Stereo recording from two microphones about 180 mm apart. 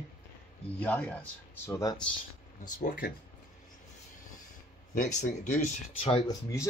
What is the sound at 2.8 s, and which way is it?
Speech, 50° left (ahead or behind).